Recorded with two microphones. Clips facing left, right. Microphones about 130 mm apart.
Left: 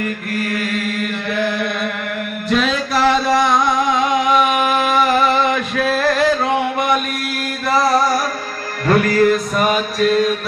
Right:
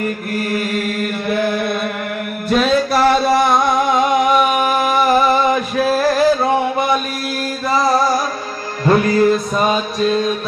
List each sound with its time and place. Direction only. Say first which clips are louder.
0.0 s mantra: right 1 dB; 40° right (ahead or behind)
2.5 s music: right 3 dB; 45° right (ahead or behind)
5.4 s a sound: right 2 dB; 40° right (ahead or behind)
8.8 s music: right 1 dB; 25° right (ahead or behind)